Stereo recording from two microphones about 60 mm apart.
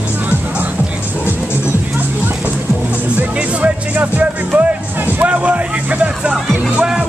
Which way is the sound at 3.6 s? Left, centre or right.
Right.